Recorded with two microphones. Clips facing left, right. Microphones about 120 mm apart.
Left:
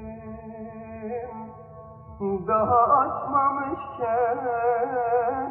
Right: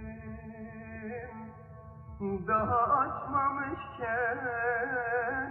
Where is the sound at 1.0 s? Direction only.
45° left (ahead or behind).